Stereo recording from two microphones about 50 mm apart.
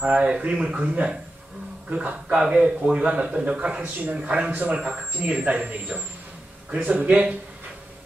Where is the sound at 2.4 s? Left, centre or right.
Centre.